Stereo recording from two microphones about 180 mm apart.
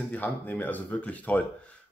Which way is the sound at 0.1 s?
10° left (ahead or behind).